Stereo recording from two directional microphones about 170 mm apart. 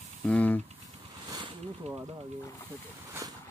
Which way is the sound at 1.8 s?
40° right (ahead or behind).